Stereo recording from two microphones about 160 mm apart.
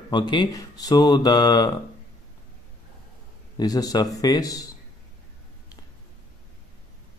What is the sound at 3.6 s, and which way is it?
Speech, 25° left (ahead or behind).